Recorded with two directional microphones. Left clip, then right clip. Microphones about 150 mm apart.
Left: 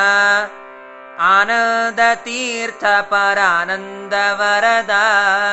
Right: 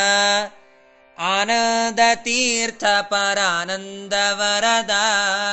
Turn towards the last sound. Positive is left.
turn(degrees=-55)  # may be behind; listen again after turning